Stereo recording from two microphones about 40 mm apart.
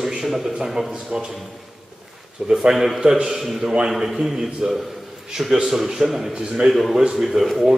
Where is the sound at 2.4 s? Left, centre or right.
Centre.